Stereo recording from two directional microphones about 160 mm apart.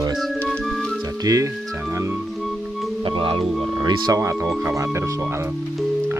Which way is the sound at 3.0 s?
30° right (ahead or behind).